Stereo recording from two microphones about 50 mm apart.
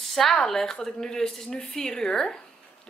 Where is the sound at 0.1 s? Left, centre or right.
Centre.